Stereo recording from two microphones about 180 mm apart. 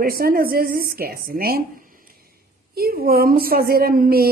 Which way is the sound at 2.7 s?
55° right (ahead or behind).